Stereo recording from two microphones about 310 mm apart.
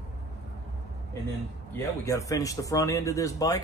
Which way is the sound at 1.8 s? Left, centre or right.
Centre.